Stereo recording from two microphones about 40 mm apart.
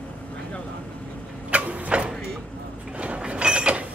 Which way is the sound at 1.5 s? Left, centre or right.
Right.